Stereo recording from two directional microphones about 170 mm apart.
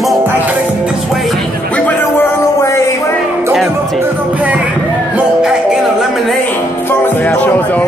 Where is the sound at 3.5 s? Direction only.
Centre (ahead or behind).